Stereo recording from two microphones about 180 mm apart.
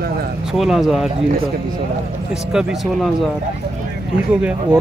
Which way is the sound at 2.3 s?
5° right (ahead or behind).